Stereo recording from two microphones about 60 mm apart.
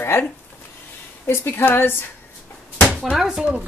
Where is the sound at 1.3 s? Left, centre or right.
Left.